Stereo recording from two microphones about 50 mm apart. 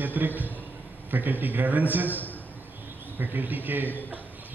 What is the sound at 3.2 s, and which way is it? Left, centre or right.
Speech, right.